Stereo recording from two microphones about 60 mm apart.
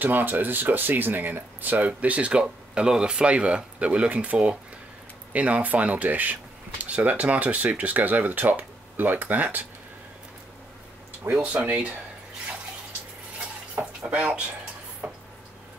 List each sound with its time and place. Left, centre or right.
0.0 s speech: right
11.3 s speech: right
14.0 s speech: centre
15.0 s a sound: right